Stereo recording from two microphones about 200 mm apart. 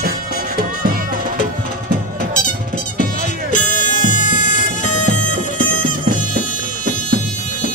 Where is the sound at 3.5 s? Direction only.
40° left (ahead or behind).